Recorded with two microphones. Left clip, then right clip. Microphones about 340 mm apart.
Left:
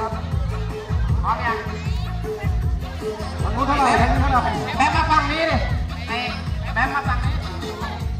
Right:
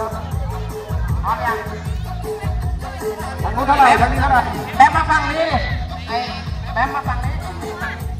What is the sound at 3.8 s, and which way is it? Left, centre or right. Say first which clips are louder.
Speech: right 6 dB; right.